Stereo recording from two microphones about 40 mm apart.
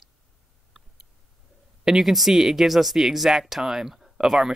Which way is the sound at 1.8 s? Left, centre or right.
Centre.